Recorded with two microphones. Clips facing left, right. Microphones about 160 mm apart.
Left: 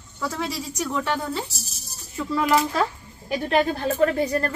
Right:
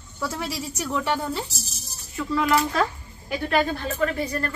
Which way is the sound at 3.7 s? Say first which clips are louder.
Left 5 dB; 40° left (ahead or behind).